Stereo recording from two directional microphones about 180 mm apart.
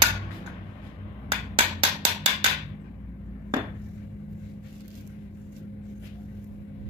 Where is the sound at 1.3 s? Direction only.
30° right (ahead or behind).